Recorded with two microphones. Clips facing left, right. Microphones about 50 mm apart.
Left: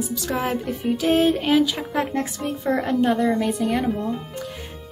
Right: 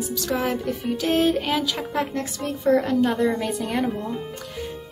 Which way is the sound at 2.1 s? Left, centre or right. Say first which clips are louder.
Left 2 dB; centre.